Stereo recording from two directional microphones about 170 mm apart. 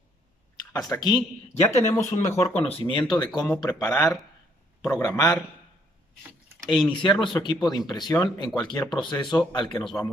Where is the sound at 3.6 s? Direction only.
20° left (ahead or behind).